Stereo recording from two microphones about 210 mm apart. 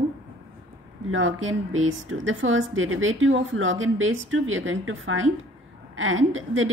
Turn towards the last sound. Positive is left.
turn(degrees=-70)  # may be behind; listen again after turning